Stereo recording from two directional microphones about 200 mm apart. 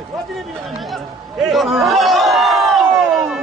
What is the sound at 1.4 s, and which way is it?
Crowd, centre (ahead or behind).